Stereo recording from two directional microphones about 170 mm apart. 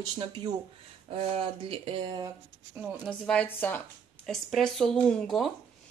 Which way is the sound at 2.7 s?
10° right (ahead or behind).